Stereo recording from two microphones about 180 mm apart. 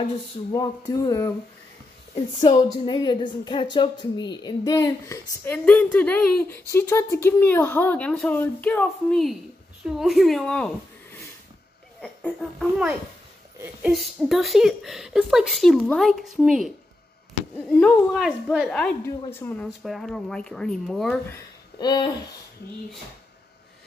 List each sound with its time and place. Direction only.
0.0 s speech: 20° left (ahead or behind)
2.1 s a woman's voice: 35° left (ahead or behind); by 21.4 s 5° left (ahead or behind)
21.7 s speech: 20° left (ahead or behind)